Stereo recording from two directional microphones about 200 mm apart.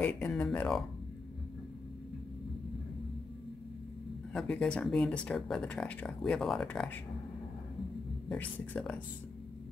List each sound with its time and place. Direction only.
0.0 s speech: 5° left (ahead or behind)
4.3 s speech: 5° left (ahead or behind)
8.3 s speech: 5° left (ahead or behind)